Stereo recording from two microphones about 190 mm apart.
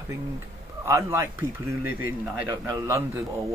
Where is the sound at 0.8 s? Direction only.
15° right (ahead or behind).